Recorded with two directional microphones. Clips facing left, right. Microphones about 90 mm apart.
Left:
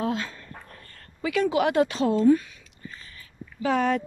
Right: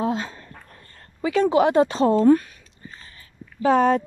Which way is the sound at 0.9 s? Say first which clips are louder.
Right 4 dB; 30° right (ahead or behind).